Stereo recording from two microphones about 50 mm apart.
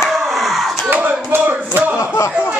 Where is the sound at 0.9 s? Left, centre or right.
Right.